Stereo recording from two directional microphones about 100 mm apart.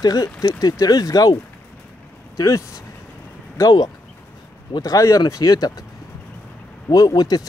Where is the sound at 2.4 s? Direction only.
35° left (ahead or behind).